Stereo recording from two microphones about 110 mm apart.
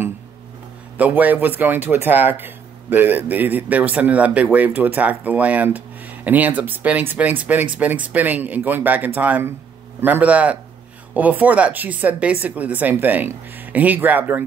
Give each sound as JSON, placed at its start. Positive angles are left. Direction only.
{"t": 0.9, "sound": "speech", "side_deg": -15}